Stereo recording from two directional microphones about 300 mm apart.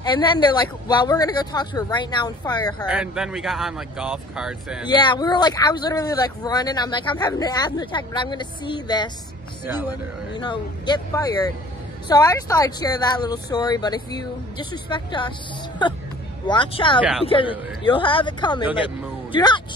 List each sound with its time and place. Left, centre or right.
0.0 s speech: centre
2.9 s speech: centre
4.8 s speech: centre
10.3 s speech: centre